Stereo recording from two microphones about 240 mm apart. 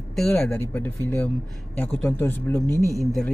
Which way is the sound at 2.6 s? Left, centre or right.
Centre.